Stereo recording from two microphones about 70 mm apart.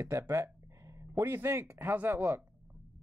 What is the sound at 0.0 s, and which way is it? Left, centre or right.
Speech, right.